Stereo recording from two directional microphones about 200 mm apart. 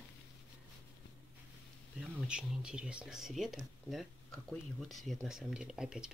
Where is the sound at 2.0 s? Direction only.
5° right (ahead or behind).